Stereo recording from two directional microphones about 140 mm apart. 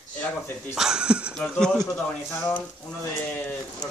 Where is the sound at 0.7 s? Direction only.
5° right (ahead or behind).